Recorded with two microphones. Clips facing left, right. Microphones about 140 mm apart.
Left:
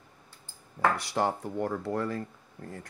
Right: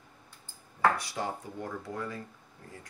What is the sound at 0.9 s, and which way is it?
Speech, 70° left (ahead or behind).